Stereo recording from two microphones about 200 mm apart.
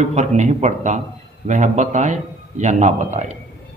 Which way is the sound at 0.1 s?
35° right (ahead or behind).